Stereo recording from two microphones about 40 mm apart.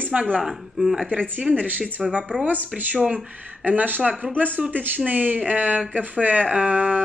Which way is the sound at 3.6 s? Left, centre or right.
Right.